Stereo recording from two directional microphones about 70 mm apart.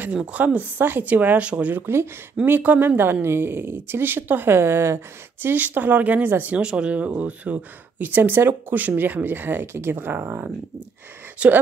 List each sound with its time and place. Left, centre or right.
0.1 s speech: centre
1.8 s speech: right
2.4 s speech: right
6.6 s speech: centre; by 10.5 s right
11.4 s speech: centre